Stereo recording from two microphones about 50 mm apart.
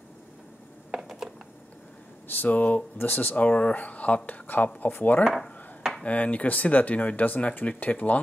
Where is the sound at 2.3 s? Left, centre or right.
Left.